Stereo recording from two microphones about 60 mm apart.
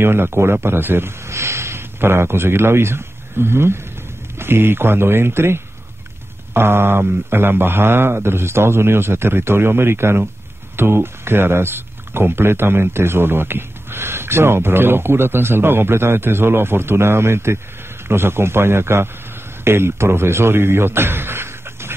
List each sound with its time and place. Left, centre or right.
0.0 s a man's voice: right